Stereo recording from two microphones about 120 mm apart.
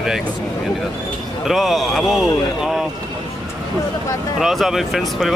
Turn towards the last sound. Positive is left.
turn(degrees=0)  # may be behind; listen again after turning